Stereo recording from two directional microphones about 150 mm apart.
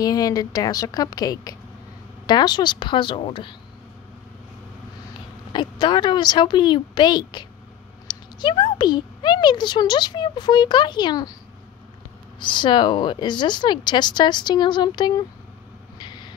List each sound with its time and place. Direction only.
0.0 s speech: 25° left (ahead or behind)
5.5 s speech: 30° left (ahead or behind)
12.4 s speech: 30° left (ahead or behind)
16.0 s vehicle: 30° left (ahead or behind)